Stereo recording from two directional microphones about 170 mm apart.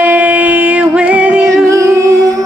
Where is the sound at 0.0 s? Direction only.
10° right (ahead or behind).